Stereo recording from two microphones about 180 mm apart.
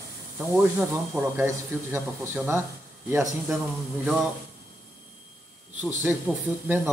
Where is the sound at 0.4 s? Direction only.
5° right (ahead or behind).